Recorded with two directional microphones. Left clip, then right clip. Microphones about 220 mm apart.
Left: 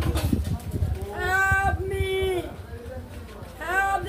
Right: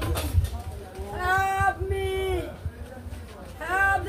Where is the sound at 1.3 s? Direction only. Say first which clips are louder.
Left 3 dB; centre (ahead or behind).